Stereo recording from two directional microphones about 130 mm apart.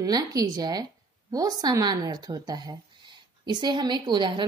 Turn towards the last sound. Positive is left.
turn(degrees=-35)  # may be behind; listen again after turning